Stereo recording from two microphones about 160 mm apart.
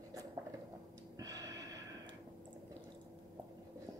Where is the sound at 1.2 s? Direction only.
20° right (ahead or behind).